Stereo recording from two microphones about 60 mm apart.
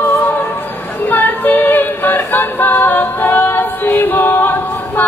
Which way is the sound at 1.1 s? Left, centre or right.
Left.